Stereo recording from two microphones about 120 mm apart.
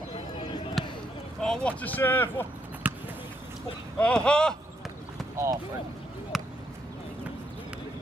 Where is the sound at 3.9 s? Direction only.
10° left (ahead or behind).